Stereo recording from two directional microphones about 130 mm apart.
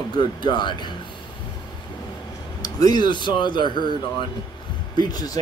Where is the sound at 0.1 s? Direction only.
35° left (ahead or behind).